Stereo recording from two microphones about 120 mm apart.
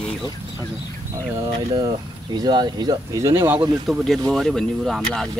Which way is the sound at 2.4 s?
35° right (ahead or behind).